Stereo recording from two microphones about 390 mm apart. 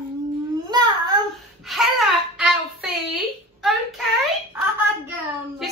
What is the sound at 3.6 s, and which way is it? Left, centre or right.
Child singing, centre.